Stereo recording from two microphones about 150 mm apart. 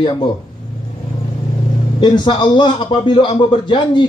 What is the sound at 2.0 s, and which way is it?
A man's voice, 30° left (ahead or behind).